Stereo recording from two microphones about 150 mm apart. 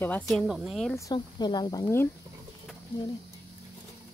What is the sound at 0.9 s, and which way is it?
Speech, 25° left (ahead or behind).